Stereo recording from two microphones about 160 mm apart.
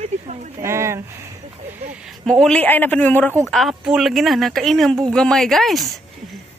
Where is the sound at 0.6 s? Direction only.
15° right (ahead or behind).